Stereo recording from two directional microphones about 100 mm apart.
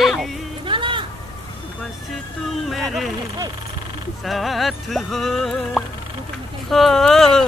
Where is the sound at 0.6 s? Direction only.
55° right (ahead or behind).